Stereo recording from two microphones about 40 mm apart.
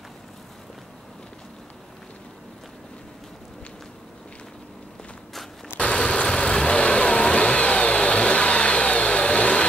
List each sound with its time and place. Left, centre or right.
5.8 s vehicle: left